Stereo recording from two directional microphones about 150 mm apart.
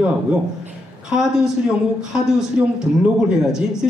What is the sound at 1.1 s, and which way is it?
A woman's voice, 5° right (ahead or behind).